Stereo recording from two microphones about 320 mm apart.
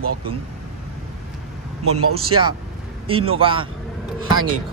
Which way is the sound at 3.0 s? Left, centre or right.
Centre.